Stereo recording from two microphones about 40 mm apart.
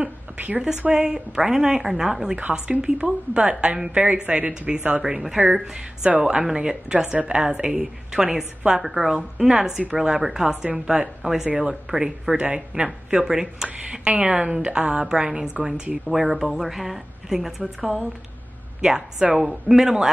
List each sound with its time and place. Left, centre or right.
0.9 s a woman's voice: centre
2.8 s a woman's voice: right
5.0 s a woman's voice: centre
6.0 s a woman's voice: right
6.4 s a woman's voice: centre
11.9 s a woman's voice: right
12.8 s a woman's voice: centre
16.1 s speech: centre
18.8 s a woman's voice: centre